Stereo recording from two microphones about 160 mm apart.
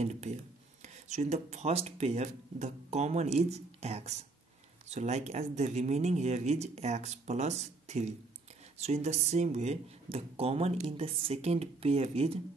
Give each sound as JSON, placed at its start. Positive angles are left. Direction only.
{"t": 0.0, "sound": "speech", "side_deg": -45}